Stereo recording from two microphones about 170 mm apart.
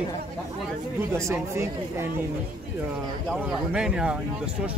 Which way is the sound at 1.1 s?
15° right (ahead or behind).